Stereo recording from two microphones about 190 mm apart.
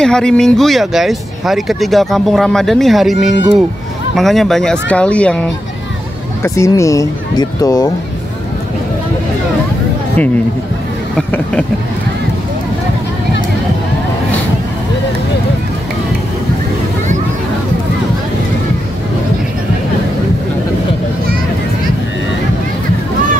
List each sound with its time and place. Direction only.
0.0 s speech: 5° left (ahead or behind)
11.1 s speech: 5° left (ahead or behind)